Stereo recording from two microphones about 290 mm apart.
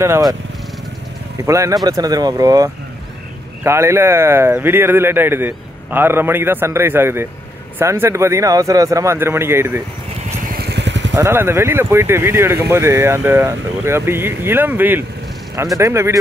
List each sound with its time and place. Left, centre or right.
0.0 s speech: centre
1.4 s speech: centre
10.5 s vehicle: right
11.1 s speech: centre